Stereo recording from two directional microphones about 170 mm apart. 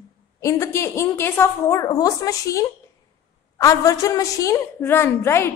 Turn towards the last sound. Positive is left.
turn(degrees=15)  # may be behind; listen again after turning